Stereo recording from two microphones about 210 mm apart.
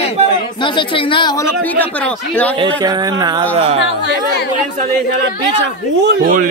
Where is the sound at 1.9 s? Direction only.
5° left (ahead or behind).